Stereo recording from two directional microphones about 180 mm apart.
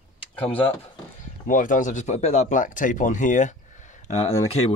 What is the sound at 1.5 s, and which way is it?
Speech, 45° left (ahead or behind).